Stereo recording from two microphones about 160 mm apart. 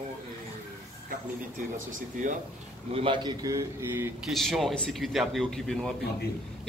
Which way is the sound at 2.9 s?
30° right (ahead or behind).